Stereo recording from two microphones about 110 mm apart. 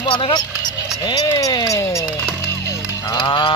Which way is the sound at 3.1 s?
45° left (ahead or behind).